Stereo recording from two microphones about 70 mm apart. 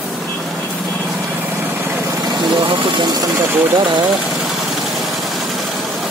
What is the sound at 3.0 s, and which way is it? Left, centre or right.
Speech, right.